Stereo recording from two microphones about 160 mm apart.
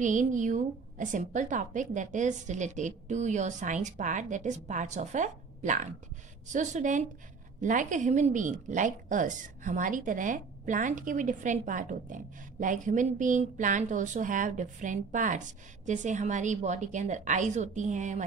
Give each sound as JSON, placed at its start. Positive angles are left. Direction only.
{"t": 0.0, "sound": "a woman's voice", "side_deg": -50}